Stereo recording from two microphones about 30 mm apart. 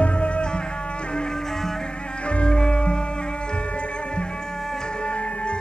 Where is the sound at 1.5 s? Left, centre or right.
Centre.